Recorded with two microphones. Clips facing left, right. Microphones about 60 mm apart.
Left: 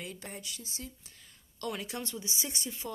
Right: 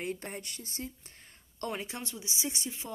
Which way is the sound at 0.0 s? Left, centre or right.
Right.